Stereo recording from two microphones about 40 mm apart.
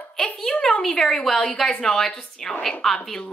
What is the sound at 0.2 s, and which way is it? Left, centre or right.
Speech, centre.